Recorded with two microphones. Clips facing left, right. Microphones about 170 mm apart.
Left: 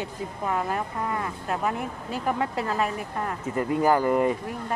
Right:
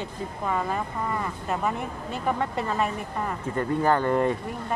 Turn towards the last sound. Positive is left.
turn(degrees=5)  # may be behind; listen again after turning